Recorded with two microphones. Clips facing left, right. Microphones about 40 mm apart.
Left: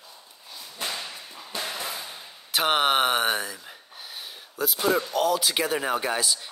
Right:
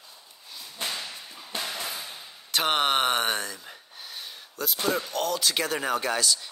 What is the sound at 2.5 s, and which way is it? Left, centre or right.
Speech, centre.